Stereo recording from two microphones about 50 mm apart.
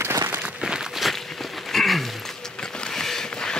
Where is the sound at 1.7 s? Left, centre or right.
Centre.